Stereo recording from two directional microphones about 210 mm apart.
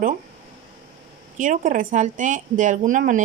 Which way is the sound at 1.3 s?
40° right (ahead or behind).